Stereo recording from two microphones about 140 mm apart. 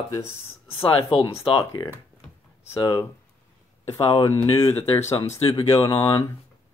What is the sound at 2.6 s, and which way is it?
Speech, 20° left (ahead or behind).